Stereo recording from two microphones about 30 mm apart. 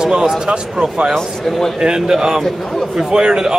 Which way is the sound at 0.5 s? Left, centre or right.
Right.